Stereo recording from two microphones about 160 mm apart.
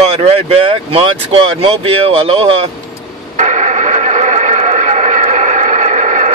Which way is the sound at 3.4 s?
45° right (ahead or behind).